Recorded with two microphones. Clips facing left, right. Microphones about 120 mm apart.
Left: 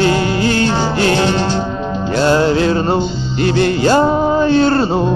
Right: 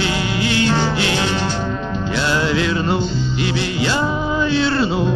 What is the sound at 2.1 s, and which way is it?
Music, 40° left (ahead or behind).